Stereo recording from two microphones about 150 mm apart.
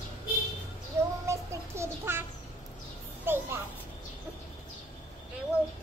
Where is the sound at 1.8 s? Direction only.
15° right (ahead or behind).